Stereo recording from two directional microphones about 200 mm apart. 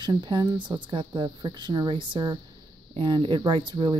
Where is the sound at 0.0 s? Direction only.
20° right (ahead or behind).